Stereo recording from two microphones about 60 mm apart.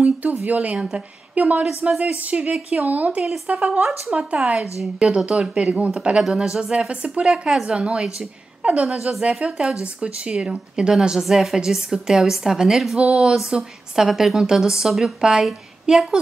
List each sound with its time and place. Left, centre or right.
0.0 s a woman's voice: right
8.8 s a woman's voice: centre